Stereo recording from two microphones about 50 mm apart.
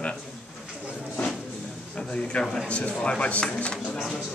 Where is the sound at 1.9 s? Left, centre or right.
Left.